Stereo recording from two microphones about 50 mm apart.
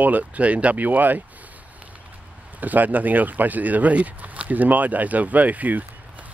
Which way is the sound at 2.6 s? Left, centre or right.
Right.